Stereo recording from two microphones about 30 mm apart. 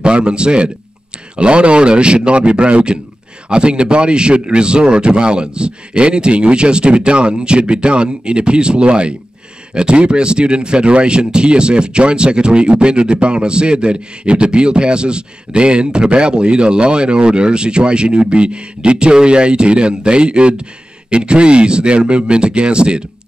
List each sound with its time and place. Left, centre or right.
0.0 s a man's voice: right